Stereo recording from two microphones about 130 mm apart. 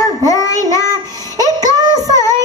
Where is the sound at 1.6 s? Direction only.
30° right (ahead or behind).